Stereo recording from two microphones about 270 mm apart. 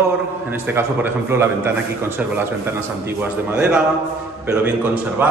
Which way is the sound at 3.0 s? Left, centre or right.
Centre.